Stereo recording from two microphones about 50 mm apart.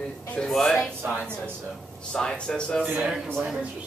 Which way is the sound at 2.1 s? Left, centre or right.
Centre.